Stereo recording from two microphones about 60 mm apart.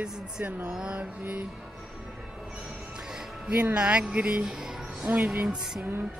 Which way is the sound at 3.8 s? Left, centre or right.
Centre.